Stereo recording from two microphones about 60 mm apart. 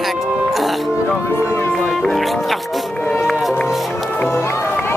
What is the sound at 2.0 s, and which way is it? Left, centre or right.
Speech, centre.